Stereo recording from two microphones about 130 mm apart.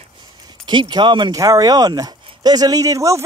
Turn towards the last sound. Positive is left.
turn(degrees=-25)  # may be behind; listen again after turning